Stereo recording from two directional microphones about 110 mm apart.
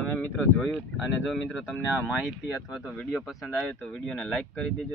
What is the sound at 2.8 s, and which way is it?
Speech, centre (ahead or behind).